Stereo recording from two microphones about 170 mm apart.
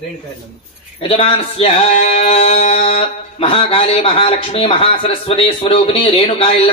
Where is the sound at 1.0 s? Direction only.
35° left (ahead or behind).